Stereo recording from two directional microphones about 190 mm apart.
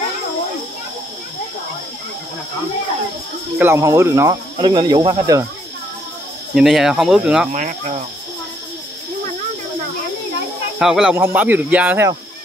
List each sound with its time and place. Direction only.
3.5 s speech: 10° right (ahead or behind)
6.5 s speech: centre (ahead or behind)
7.5 s cricket: 40° right (ahead or behind)
10.8 s speech: 5° right (ahead or behind)